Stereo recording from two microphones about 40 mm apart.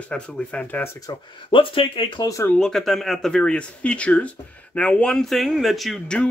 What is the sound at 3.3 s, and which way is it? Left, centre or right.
Speech, left.